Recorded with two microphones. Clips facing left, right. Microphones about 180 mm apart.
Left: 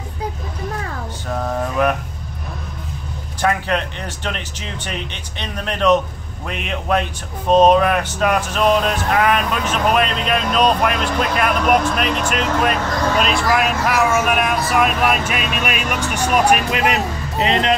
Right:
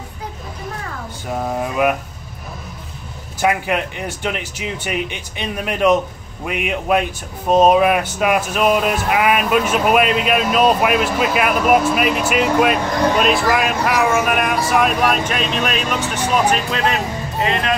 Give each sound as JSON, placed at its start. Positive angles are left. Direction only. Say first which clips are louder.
{"t": 1.5, "sound": "a sound", "louder": "right 1 dB", "side_deg": -10}
{"t": 3.3, "sound": "speech", "louder": "right 1 dB", "side_deg": -10}
{"t": 13.2, "sound": "speech", "louder": "right 1 dB", "side_deg": -5}